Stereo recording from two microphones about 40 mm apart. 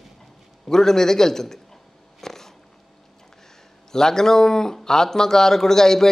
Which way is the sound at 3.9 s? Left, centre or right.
Centre.